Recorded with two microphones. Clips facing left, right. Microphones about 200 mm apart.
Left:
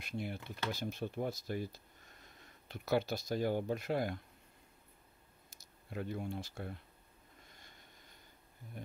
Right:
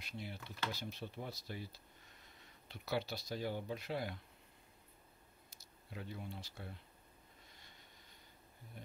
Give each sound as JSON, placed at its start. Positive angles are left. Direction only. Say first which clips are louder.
{"t": 0.0, "sound": "speech", "louder": "left 7 dB", "side_deg": 50}
{"t": 5.5, "sound": "speech", "louder": "left 6 dB", "side_deg": 50}
{"t": 8.8, "sound": "speech", "louder": "left 7 dB", "side_deg": 50}